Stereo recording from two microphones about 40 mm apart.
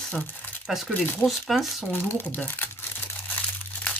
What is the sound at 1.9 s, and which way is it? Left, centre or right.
Speech, left.